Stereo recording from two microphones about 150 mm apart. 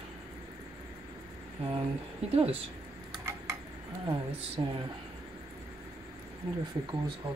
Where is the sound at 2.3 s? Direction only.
40° right (ahead or behind).